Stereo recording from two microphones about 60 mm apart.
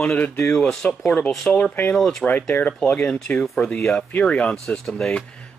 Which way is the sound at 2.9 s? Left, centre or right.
Centre.